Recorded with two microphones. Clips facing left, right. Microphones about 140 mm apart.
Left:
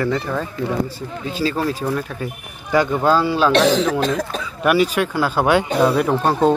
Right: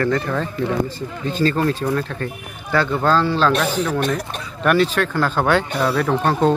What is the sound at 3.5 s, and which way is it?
Speech, 90° left.